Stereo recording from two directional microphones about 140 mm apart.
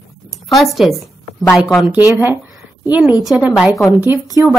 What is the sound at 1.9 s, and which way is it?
A woman's voice, 10° right (ahead or behind).